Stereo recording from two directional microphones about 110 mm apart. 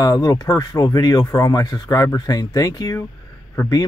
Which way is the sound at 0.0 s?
35° left (ahead or behind).